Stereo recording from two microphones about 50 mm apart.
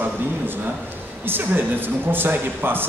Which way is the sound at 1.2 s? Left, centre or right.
Right.